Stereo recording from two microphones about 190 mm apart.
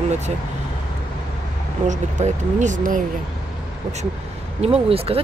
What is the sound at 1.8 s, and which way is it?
Speech, 40° right (ahead or behind).